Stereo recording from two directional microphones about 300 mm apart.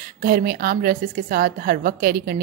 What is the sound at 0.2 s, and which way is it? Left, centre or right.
A woman's voice, right.